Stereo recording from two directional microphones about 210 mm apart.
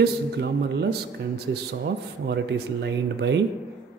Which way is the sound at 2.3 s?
55° right (ahead or behind).